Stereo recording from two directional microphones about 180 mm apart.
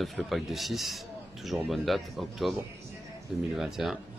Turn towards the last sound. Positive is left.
turn(degrees=0)  # may be behind; listen again after turning